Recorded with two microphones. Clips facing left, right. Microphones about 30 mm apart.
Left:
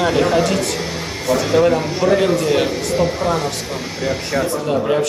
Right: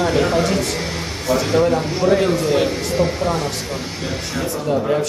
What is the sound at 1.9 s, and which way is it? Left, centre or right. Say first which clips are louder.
A man's voice: left 1 dB; centre.